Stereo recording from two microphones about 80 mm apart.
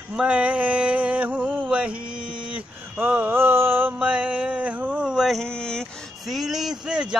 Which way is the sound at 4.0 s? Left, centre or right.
Centre.